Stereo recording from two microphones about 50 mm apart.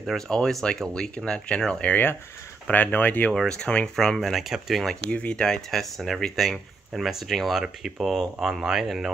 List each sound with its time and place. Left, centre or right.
0.3 s speech: centre
2.7 s speech: left
3.4 s speech: centre
5.1 s speech: left; by 9.1 s centre